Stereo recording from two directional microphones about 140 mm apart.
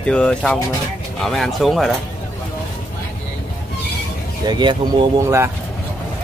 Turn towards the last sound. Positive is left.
turn(degrees=-20)  # may be behind; listen again after turning